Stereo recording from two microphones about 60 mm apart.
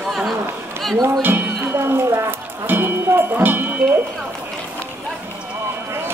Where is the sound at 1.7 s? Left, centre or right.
Right.